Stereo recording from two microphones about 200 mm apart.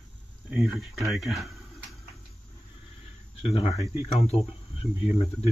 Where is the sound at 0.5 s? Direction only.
Centre (ahead or behind).